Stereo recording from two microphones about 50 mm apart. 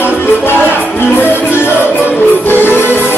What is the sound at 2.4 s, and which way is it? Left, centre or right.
Music, left.